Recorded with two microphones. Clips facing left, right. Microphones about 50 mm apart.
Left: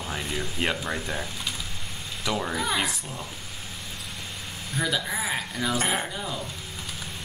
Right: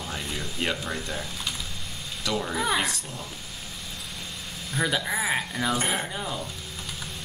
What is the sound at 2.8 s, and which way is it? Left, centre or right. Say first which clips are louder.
Speech: even; centre.